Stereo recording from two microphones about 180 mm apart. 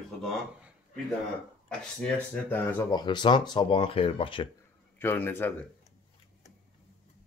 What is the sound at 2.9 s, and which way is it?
Speech, 25° left (ahead or behind).